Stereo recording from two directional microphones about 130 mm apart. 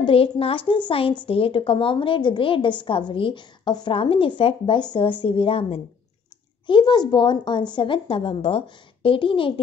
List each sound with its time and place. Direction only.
0.0 s a woman's voice: 45° left (ahead or behind)
6.7 s a woman's voice: 35° left (ahead or behind)